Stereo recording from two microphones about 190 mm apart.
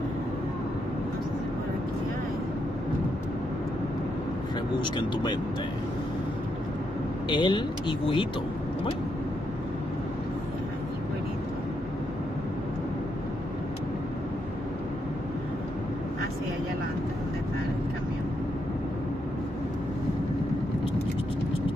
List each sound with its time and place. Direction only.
4.7 s speech: 25° left (ahead or behind)
7.2 s speech: 25° left (ahead or behind)